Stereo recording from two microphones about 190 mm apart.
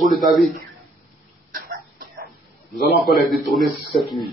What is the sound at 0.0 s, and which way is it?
Speech, centre (ahead or behind).